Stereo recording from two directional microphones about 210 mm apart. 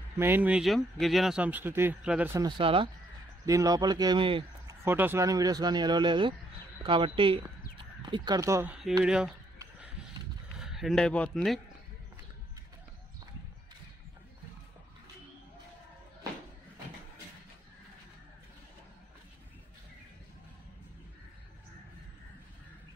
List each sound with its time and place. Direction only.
0.2 s speech: 10° right (ahead or behind)
2.4 s speech: 25° right (ahead or behind)
4.8 s speech: 10° right (ahead or behind)
9.0 s speech: 5° right (ahead or behind)
10.6 s speech: centre (ahead or behind)